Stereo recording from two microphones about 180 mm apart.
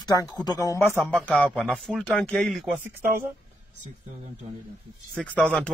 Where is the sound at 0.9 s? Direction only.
10° right (ahead or behind).